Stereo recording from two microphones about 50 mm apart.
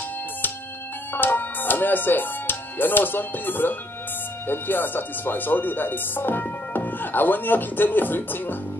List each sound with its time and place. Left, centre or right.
1.1 s speech: left